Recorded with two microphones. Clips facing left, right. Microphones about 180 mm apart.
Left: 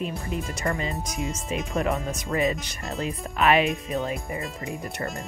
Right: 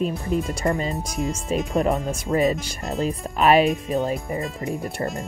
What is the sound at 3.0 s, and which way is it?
Speech, 35° right (ahead or behind).